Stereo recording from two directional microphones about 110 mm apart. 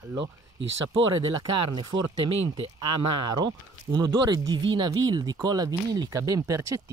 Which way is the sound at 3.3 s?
40° right (ahead or behind).